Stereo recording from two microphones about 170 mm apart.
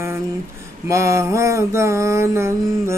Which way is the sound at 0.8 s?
15° right (ahead or behind).